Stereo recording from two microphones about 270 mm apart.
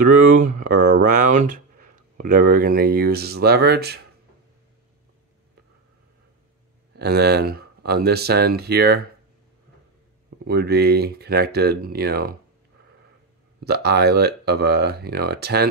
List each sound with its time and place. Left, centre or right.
0.0 s speech: right
7.0 s speech: right
10.4 s speech: right
13.7 s speech: right